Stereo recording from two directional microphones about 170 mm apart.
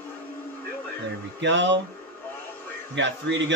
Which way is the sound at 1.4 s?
90° right.